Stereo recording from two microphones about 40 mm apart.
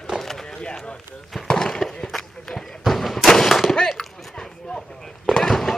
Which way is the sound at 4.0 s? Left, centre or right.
Centre.